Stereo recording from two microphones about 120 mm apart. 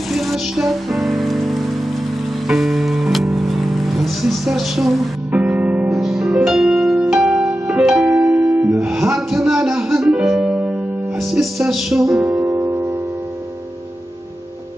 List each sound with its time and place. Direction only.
0.1 s rain on surface: centre (ahead or behind)
2.4 s music: centre (ahead or behind)
5.9 s music: centre (ahead or behind)
12.3 s music: 25° right (ahead or behind)